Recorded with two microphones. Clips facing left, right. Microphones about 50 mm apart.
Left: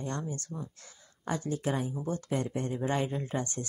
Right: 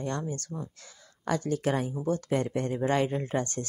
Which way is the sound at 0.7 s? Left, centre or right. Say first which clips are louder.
Right 3 dB; right.